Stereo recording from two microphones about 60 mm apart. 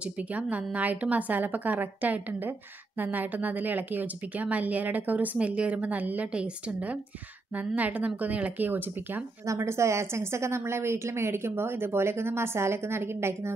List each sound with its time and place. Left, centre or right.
0.0 s a woman's voice: right
9.5 s a woman's voice: right